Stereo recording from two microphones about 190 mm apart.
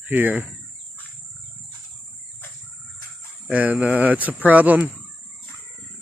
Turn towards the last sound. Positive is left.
turn(degrees=-10)  # may be behind; listen again after turning